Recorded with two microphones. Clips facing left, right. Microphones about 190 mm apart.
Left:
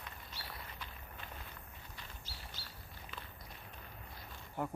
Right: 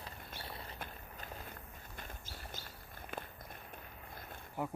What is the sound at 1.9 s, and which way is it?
Walk, 50° right (ahead or behind).